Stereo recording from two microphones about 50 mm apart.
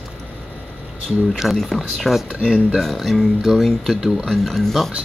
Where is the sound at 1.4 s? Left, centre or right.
Centre.